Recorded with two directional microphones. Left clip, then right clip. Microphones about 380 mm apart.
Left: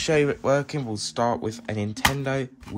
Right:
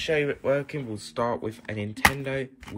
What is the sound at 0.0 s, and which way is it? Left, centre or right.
Speech, left.